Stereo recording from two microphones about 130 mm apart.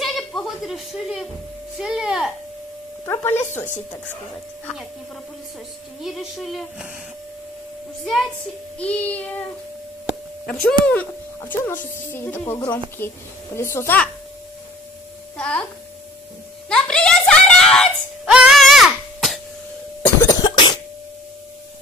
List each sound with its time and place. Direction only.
0.0 s a sound: 5° left (ahead or behind)
1.8 s speech: 5° right (ahead or behind)
3.1 s a woman's voice: 15° left (ahead or behind)
6.0 s speech: centre (ahead or behind)
8.0 s a woman's voice: 5° left (ahead or behind)
10.4 s a woman's voice: 5° left (ahead or behind)
15.3 s a child's voice: 5° left (ahead or behind)
16.6 s a sound: 5° left (ahead or behind)
20.2 s cough: 30° left (ahead or behind)